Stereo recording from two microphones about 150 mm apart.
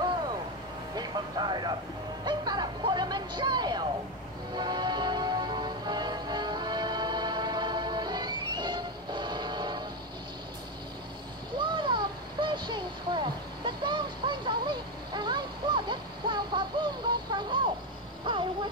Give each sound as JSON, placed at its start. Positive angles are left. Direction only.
{"t": 0.9, "sound": "speech", "side_deg": -30}
{"t": 4.6, "sound": "music", "side_deg": -30}
{"t": 11.5, "sound": "a sound", "side_deg": -30}